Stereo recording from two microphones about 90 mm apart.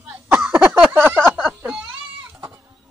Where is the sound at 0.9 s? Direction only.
25° right (ahead or behind).